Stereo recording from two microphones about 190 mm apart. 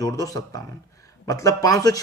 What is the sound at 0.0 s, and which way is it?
A man's voice, 15° left (ahead or behind).